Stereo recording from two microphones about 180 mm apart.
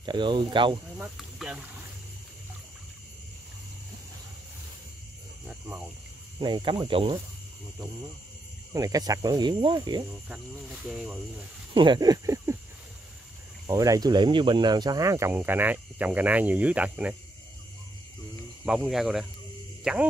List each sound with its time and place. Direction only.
0.0 s speech: 25° right (ahead or behind)
0.9 s speech: 5° right (ahead or behind)
5.5 s speech: 5° right (ahead or behind)
6.4 s speech: 25° right (ahead or behind)
8.7 s speech: 20° right (ahead or behind)
10.2 s speech: 5° right (ahead or behind)
11.7 s speech: 25° right (ahead or behind)
13.7 s speech: 20° right (ahead or behind)
18.7 s speech: 5° right (ahead or behind)